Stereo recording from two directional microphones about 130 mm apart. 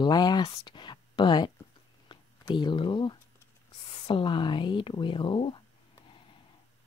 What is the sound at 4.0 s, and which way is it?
Speech, 40° left (ahead or behind).